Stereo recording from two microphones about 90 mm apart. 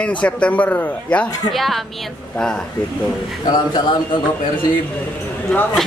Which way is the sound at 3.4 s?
55° left (ahead or behind).